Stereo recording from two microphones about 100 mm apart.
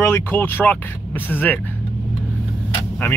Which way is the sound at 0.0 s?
20° left (ahead or behind).